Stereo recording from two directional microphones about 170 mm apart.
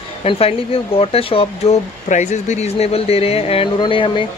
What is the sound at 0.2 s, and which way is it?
Speech, 35° left (ahead or behind).